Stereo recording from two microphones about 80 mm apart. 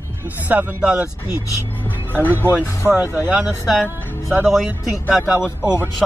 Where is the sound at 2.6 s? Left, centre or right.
Left.